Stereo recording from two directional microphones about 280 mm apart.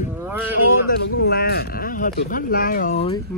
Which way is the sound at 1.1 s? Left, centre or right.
Left.